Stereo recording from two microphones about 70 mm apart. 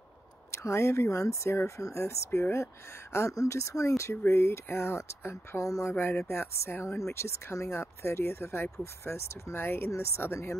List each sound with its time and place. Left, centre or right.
0.5 s speech: left
3.3 s speech: left
4.2 s speech: left
5.6 s speech: left
5.9 s speech: left